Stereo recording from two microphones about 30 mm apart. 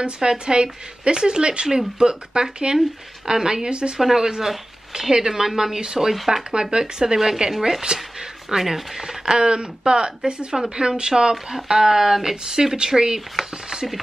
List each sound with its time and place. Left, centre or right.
0.0 s speech: right
3.7 s speech: right
4.0 s speech: centre
6.1 s speech: centre
6.5 s speech: right
7.9 s speech: right
8.5 s speech: centre
9.2 s speech: right
11.5 s speech: centre